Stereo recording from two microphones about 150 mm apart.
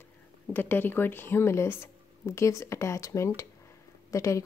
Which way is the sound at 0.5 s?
15° left (ahead or behind).